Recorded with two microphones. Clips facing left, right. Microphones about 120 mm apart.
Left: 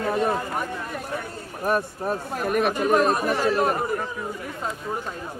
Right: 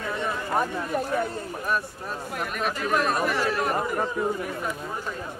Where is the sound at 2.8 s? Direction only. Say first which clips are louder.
Left 1 dB; 35° left (ahead or behind).